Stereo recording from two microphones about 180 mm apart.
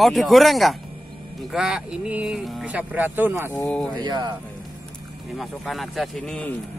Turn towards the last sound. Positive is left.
turn(degrees=5)  # may be behind; listen again after turning